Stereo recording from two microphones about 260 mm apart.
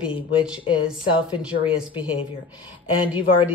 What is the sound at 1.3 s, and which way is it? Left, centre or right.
A woman's voice, centre.